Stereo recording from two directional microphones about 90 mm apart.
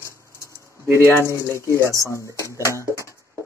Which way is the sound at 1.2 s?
30° right (ahead or behind).